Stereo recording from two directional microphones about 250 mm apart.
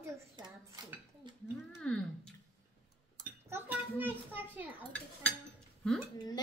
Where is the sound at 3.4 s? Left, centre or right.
Centre.